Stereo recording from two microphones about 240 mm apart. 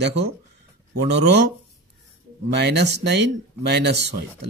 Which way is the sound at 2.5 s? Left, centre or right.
Right.